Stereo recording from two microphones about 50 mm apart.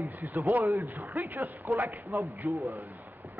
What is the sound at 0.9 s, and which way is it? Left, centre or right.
Speech, right.